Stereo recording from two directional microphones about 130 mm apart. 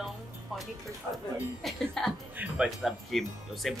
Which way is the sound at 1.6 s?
5° left (ahead or behind).